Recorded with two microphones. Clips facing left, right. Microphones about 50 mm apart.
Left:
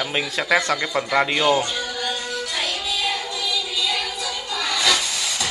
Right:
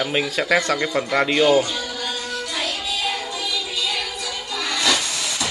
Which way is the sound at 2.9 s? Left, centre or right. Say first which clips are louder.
Left 1 dB; right.